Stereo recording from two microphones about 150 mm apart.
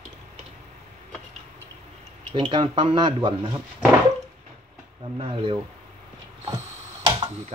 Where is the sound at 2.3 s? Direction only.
30° right (ahead or behind).